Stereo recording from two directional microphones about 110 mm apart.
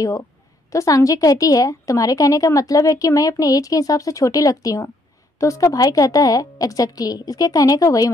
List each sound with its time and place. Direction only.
0.0 s a woman's voice: 30° left (ahead or behind)